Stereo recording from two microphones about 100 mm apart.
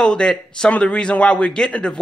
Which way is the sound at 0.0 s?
5° left (ahead or behind).